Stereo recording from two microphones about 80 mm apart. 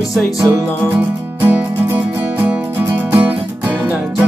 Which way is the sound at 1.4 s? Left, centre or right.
Right.